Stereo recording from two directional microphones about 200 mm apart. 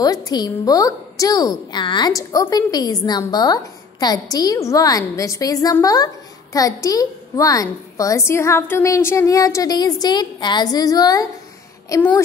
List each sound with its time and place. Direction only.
0.0 s a woman's voice: 20° left (ahead or behind)